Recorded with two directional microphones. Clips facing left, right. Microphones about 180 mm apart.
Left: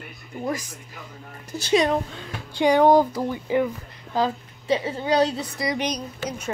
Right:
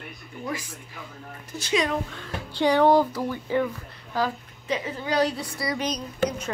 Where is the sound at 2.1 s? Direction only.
15° left (ahead or behind).